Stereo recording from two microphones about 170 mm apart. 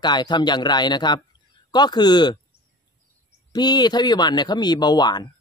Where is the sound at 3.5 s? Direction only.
25° left (ahead or behind).